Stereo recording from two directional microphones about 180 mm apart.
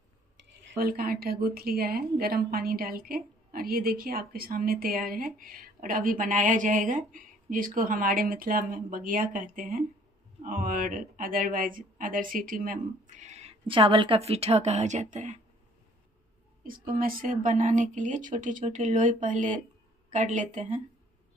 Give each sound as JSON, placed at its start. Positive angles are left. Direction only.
{"t": 0.7, "sound": "a woman's voice", "side_deg": -55}
{"t": 16.6, "sound": "a woman's voice", "side_deg": -50}